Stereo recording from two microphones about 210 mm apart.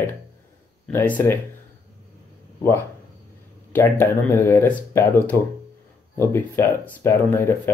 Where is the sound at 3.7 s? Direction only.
10° left (ahead or behind).